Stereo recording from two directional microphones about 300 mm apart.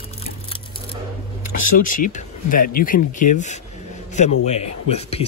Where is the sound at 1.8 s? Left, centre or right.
Left.